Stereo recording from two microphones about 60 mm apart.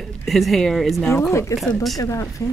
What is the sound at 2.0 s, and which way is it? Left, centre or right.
Speech, left.